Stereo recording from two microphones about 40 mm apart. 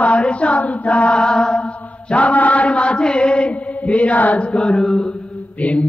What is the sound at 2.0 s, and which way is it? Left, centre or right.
Chant, left.